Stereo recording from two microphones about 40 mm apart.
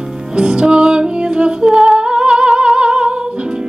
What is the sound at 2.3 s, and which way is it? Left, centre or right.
Music, centre.